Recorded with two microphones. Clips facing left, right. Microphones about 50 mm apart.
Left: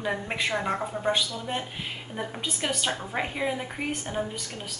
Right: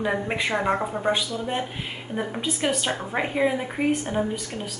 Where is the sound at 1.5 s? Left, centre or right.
Centre.